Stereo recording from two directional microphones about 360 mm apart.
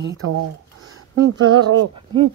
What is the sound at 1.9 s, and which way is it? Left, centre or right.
Speech, centre.